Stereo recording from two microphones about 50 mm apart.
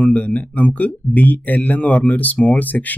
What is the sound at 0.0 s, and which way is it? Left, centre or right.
Speech, left.